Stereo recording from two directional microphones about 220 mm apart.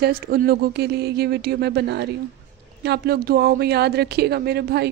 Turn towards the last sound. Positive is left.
turn(degrees=-45)  # may be behind; listen again after turning